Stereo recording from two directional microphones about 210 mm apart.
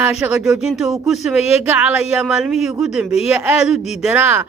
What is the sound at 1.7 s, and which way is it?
A woman's voice, 5° right (ahead or behind).